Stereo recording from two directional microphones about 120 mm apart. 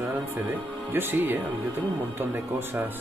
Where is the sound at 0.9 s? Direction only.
15° right (ahead or behind).